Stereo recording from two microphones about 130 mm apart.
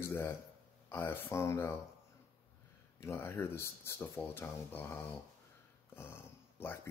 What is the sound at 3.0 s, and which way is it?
Speech, 20° left (ahead or behind).